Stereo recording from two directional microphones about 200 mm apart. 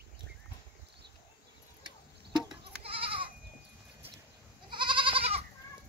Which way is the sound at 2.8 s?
30° right (ahead or behind).